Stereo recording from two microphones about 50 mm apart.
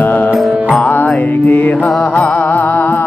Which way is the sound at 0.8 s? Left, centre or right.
Left.